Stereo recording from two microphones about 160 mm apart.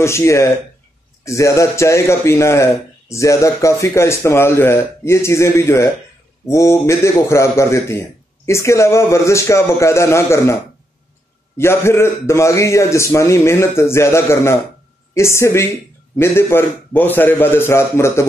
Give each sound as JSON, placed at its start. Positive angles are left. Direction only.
{"t": 0.0, "sound": "a man's voice", "side_deg": 15}